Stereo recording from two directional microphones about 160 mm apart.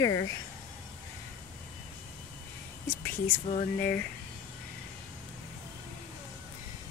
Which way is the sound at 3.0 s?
65° left (ahead or behind).